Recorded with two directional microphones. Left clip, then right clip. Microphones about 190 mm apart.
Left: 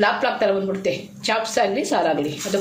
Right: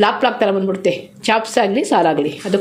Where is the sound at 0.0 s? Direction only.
45° right (ahead or behind).